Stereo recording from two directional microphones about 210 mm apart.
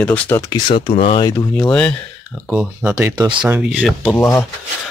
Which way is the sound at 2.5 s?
10° right (ahead or behind).